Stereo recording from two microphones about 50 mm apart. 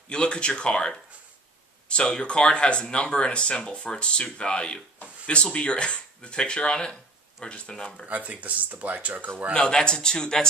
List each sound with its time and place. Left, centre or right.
0.1 s speech: left
8.1 s speech: right
9.5 s a man's voice: centre